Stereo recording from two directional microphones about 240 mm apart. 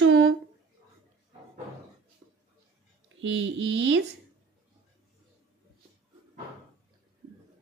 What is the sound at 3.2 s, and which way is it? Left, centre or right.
Speech, right.